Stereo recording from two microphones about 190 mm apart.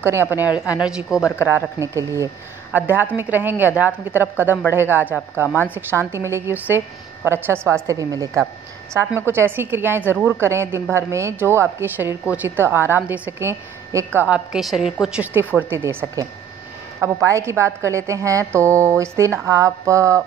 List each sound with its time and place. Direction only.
0.0 s a woman's voice: 10° right (ahead or behind)
1.5 s a woman's voice: 15° right (ahead or behind)
4.5 s speech: 10° left (ahead or behind)
4.7 s a woman's voice: 10° right (ahead or behind)